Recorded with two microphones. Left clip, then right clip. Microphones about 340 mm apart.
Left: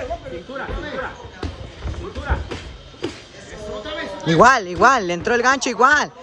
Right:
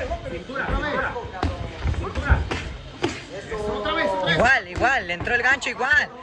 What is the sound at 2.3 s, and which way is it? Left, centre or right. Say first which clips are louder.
Music: right 1 dB; centre.